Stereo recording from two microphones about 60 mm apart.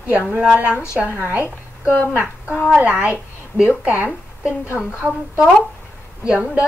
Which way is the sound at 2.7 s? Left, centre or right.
Right.